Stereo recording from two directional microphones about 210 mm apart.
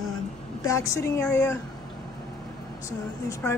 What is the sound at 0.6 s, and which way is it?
Speech, 15° left (ahead or behind).